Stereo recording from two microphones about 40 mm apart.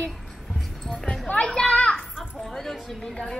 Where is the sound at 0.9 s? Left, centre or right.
Centre.